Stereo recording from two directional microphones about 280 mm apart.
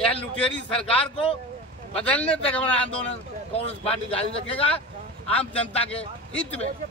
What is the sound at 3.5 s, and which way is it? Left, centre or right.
A man's voice, left.